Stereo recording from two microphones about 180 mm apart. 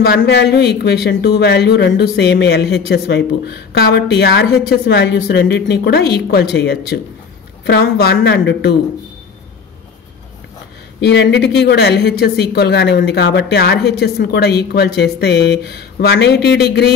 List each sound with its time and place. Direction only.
0.0 s speech: 65° left (ahead or behind)
11.1 s speech: 70° left (ahead or behind)